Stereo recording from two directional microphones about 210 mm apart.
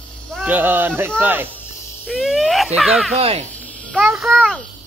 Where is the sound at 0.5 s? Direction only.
10° right (ahead or behind).